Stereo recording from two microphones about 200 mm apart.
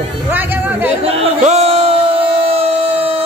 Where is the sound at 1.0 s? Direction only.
30° right (ahead or behind).